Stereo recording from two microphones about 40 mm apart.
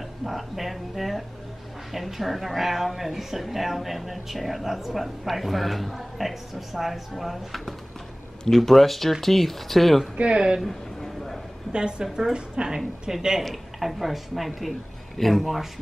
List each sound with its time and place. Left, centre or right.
0.2 s speech: centre
10.3 s a woman's voice: right
10.6 s a sound: centre
11.7 s a woman's voice: right
13.4 s speech: centre